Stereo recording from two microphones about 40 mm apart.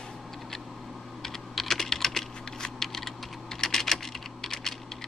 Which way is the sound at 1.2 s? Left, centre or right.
Centre.